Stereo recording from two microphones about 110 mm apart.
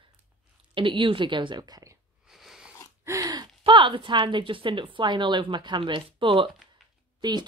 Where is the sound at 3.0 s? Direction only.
30° right (ahead or behind).